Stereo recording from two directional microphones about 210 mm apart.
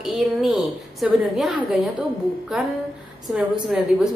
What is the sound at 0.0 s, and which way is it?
A woman's voice, centre (ahead or behind).